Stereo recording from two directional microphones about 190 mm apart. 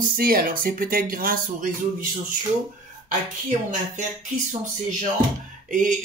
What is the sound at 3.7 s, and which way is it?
Speech, 40° right (ahead or behind).